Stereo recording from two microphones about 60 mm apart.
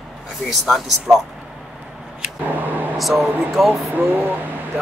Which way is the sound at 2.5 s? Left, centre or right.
Right.